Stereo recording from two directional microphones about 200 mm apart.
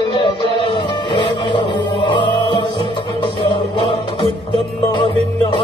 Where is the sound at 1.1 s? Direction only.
25° left (ahead or behind).